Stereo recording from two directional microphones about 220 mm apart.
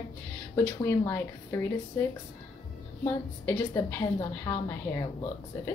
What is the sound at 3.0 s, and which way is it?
A woman's voice, 10° left (ahead or behind).